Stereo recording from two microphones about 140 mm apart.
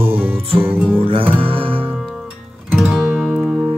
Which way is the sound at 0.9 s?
40° right (ahead or behind).